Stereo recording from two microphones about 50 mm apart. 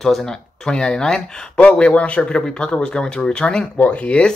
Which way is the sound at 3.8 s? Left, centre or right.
Left.